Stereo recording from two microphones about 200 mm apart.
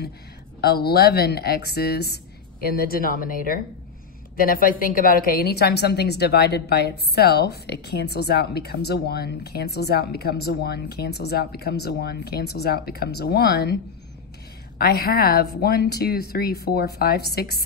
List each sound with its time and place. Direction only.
0.6 s a woman's voice: 50° left (ahead or behind)
14.8 s a woman's voice: 50° left (ahead or behind)